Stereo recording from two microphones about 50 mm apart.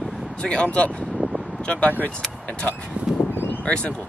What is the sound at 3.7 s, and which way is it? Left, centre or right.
Speech, left.